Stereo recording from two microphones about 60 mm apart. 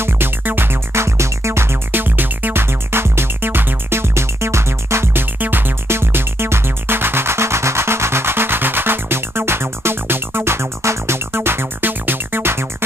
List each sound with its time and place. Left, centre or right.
0.0 s music: right